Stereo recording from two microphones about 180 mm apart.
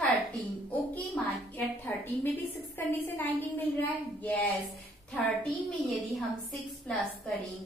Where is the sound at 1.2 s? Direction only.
Centre (ahead or behind).